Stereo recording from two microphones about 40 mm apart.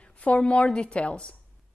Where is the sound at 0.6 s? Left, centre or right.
Left.